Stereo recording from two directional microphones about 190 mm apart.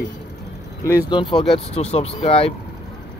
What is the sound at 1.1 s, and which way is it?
Speech, 25° left (ahead or behind).